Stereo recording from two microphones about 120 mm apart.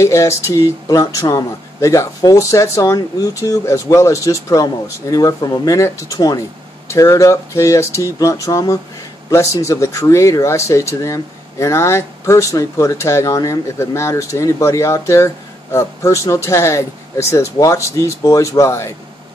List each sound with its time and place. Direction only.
0.0 s speech: 25° left (ahead or behind)